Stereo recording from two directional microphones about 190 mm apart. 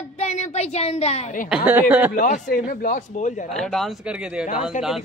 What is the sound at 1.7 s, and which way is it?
Speech, 10° right (ahead or behind).